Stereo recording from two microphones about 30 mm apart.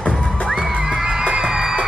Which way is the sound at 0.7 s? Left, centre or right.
Right.